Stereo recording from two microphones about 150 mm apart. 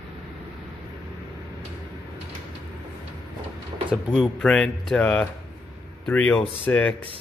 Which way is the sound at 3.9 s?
5° right (ahead or behind).